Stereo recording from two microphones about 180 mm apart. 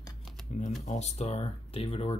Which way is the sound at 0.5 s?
40° left (ahead or behind).